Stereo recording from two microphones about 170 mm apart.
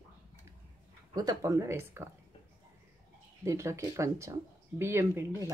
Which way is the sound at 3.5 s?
15° right (ahead or behind).